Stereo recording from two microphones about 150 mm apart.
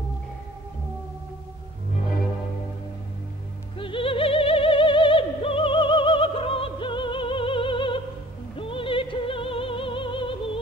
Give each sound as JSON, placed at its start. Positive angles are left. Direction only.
{"t": 3.7, "sound": "music", "side_deg": 35}